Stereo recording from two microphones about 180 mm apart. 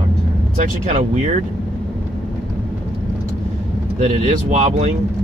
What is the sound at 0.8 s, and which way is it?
Speech, 40° right (ahead or behind).